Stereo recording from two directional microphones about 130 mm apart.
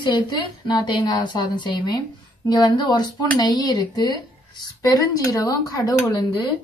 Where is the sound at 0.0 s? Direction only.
35° left (ahead or behind).